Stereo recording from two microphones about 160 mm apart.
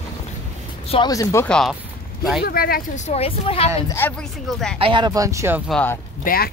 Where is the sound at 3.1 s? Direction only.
35° left (ahead or behind).